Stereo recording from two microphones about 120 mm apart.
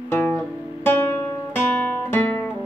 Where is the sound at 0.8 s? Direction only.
20° left (ahead or behind).